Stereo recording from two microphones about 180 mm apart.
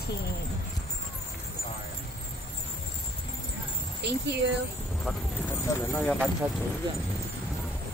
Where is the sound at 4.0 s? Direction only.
70° right (ahead or behind).